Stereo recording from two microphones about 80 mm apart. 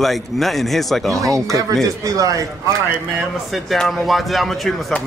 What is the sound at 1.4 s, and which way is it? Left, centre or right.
A man's voice, right.